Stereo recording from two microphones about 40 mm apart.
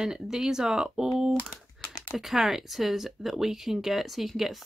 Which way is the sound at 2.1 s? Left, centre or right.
Centre.